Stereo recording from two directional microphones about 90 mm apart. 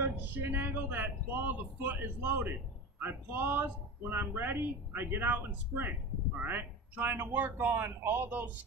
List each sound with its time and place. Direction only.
0.2 s speech: 20° right (ahead or behind)